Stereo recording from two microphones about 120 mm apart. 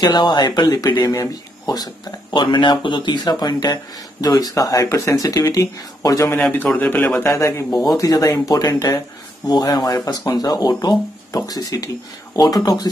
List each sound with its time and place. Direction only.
0.0 s speech: 35° left (ahead or behind)
2.3 s speech: 40° left (ahead or behind)
6.8 s speech: 15° left (ahead or behind)
7.2 s a man's voice: 25° left (ahead or behind)
7.7 s speech: centre (ahead or behind)
8.0 s speech: 30° left (ahead or behind)